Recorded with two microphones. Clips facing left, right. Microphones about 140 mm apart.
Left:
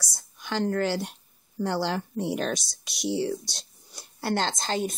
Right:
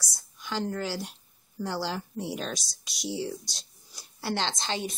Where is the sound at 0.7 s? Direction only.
65° left (ahead or behind).